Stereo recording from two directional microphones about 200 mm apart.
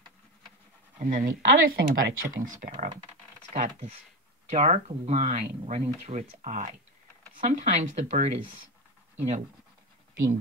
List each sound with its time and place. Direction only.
0.9 s speech: 40° right (ahead or behind)